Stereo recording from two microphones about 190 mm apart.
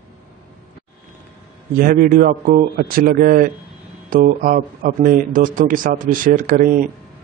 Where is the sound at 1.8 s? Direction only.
50° right (ahead or behind).